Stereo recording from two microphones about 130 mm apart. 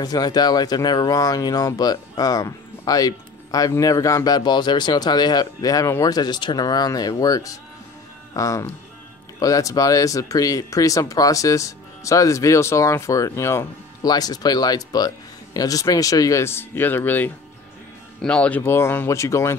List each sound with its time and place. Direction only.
0.0 s speech: 30° left (ahead or behind); by 18.6 s 10° left (ahead or behind)
18.6 s speech: 20° left (ahead or behind)